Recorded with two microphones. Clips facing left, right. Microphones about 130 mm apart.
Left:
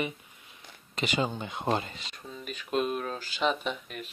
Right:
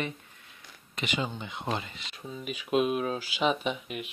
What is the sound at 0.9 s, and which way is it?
Speech, 35° left (ahead or behind).